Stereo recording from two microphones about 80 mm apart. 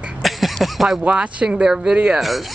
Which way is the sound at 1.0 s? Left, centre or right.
Centre.